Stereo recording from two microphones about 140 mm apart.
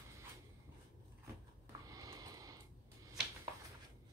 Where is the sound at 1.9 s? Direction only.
25° right (ahead or behind).